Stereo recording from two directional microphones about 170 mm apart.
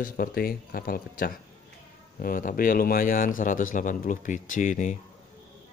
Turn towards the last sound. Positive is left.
turn(degrees=50)  # may be behind; listen again after turning